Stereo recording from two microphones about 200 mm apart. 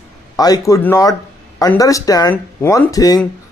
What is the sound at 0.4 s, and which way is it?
Speech, 15° left (ahead or behind).